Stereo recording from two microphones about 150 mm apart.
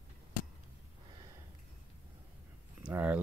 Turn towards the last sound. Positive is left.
turn(degrees=-10)  # may be behind; listen again after turning